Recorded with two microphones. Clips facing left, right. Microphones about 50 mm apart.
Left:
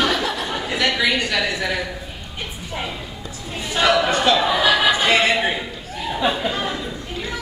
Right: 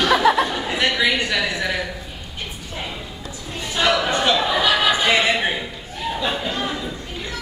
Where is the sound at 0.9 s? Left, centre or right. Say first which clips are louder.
Even; centre.